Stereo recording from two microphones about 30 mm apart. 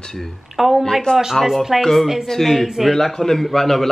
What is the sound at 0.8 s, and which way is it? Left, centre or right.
Speech, centre.